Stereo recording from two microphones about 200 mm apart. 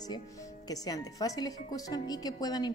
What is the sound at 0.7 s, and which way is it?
A woman's voice, 20° left (ahead or behind).